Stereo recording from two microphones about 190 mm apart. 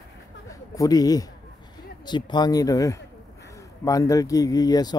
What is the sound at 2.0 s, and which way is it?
Speech, 25° left (ahead or behind).